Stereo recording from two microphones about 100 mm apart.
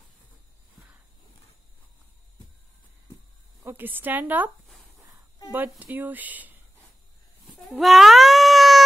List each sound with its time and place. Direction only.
3.6 s speech: 20° right (ahead or behind)
5.5 s speech: 15° right (ahead or behind)
7.8 s cat: centre (ahead or behind)